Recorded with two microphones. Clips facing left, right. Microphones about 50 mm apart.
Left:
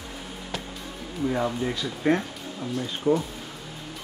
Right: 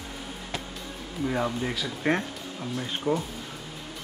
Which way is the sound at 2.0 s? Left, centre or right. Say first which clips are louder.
Left 3 dB; right.